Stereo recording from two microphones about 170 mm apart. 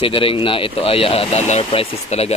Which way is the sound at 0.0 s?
30° left (ahead or behind).